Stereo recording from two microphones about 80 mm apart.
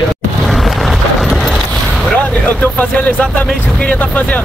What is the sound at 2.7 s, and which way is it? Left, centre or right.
Speech, centre.